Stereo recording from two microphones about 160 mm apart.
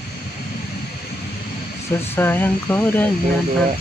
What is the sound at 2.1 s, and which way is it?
Speech, 15° left (ahead or behind).